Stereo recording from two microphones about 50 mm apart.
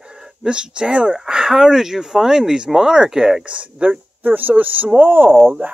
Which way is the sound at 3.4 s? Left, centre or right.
Right.